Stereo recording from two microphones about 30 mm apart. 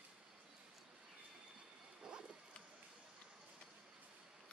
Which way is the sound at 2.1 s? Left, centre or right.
Right.